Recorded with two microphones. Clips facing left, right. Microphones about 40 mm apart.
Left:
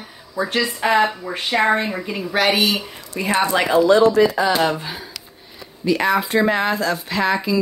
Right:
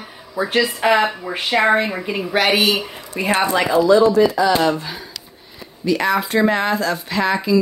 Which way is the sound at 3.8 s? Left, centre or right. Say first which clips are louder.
Right 1 dB; left.